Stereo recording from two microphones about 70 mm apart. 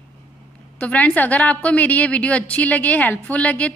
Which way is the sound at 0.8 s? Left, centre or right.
Left.